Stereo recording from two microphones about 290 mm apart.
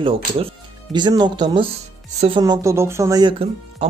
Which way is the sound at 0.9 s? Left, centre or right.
Centre.